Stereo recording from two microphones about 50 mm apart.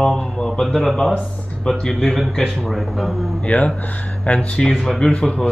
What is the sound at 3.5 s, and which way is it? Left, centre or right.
Speech, left.